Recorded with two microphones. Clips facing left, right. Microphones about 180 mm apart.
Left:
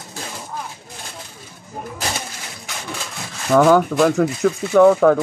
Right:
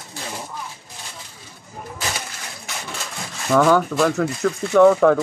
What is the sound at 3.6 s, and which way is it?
Speech, 15° left (ahead or behind).